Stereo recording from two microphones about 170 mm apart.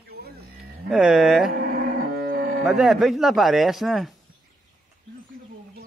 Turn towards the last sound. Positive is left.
turn(degrees=0)  # may be behind; listen again after turning